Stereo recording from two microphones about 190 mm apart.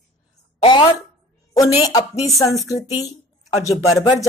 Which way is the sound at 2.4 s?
15° left (ahead or behind).